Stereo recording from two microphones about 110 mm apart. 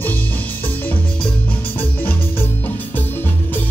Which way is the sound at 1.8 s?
15° left (ahead or behind).